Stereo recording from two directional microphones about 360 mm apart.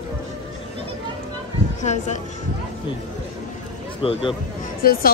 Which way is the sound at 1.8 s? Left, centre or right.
Centre.